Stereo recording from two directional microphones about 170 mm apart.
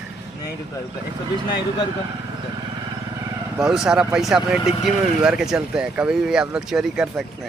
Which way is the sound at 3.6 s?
5° right (ahead or behind).